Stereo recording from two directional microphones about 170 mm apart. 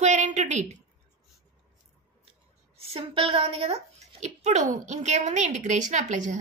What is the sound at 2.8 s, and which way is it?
A woman's voice, 35° right (ahead or behind).